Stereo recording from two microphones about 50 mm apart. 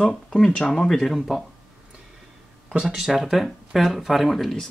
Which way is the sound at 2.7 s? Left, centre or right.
Centre.